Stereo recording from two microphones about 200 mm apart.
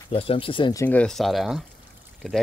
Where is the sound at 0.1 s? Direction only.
25° left (ahead or behind).